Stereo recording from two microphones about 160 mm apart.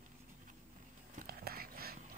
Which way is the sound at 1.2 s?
70° right (ahead or behind).